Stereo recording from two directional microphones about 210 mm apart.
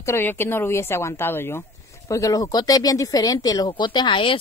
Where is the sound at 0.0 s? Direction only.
10° left (ahead or behind).